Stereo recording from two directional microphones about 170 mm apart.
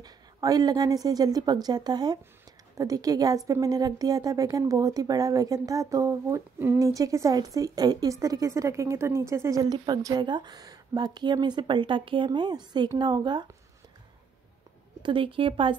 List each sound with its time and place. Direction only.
0.0 s a woman's voice: 20° right (ahead or behind)
15.0 s a woman's voice: 30° right (ahead or behind)